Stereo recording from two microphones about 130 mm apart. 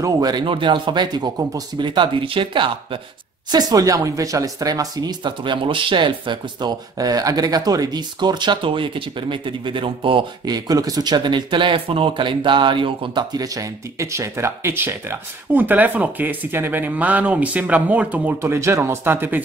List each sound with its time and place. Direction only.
0.0 s speech: 30° right (ahead or behind)
3.5 s speech: 30° right (ahead or behind)